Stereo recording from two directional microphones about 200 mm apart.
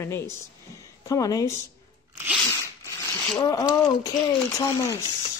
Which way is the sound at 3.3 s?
20° left (ahead or behind).